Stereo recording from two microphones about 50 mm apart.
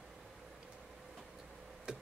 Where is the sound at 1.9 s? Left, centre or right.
Centre.